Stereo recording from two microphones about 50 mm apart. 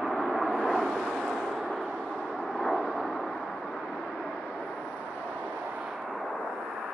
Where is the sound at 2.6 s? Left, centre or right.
Left.